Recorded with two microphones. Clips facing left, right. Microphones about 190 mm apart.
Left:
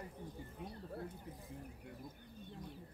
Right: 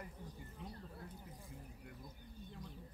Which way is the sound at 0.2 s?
55° left (ahead or behind).